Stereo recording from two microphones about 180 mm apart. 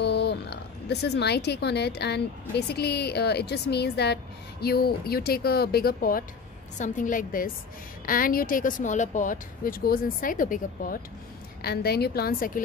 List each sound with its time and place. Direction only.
0.0 s speech: 65° left (ahead or behind); by 12.6 s 50° left (ahead or behind)